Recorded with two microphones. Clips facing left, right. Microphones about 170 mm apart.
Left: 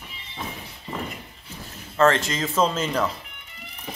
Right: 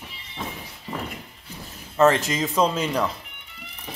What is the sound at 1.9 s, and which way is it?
Speech, 15° right (ahead or behind).